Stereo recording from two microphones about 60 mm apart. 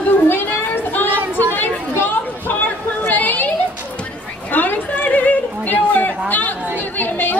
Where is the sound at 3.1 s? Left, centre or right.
Left.